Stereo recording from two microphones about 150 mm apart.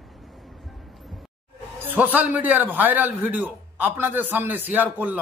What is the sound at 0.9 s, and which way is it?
Music, centre (ahead or behind).